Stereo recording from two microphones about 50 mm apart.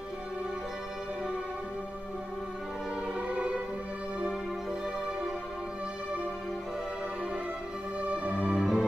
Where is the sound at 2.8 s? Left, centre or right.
Right.